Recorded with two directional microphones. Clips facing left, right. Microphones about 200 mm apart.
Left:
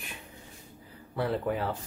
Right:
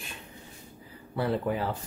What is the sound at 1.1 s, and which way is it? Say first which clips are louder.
Speech: right 1 dB; centre (ahead or behind).